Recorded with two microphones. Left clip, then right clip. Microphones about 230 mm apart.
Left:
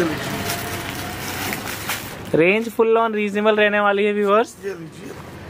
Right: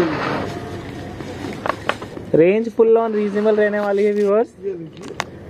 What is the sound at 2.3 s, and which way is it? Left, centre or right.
A man's voice, centre.